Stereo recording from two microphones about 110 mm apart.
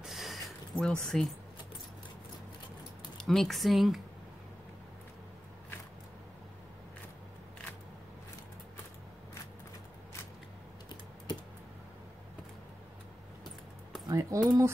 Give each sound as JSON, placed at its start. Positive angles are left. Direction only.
{"t": 0.0, "sound": "a sound", "side_deg": 0}
{"t": 1.0, "sound": "speech", "side_deg": 5}
{"t": 3.2, "sound": "speech", "side_deg": 5}
{"t": 14.0, "sound": "speech", "side_deg": -30}